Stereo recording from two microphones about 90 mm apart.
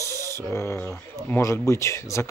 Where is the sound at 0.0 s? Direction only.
30° left (ahead or behind).